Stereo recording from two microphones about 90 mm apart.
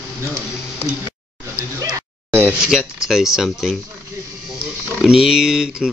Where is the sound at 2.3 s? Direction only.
20° right (ahead or behind).